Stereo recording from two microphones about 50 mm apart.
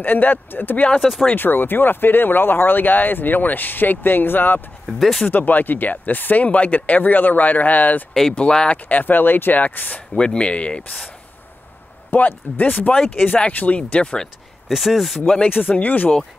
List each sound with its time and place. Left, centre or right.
0.0 s speech: left
0.9 s speech: centre
1.3 s speech: left
4.8 s speech: centre
5.3 s speech: left
8.1 s speech: centre
8.4 s speech: centre
8.8 s speech: left
10.1 s speech: centre
12.1 s speech: left
14.7 s speech: centre
15.5 s speech: left